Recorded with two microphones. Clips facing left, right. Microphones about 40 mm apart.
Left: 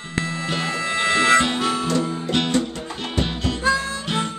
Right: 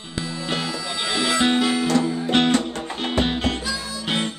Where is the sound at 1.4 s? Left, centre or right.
Right.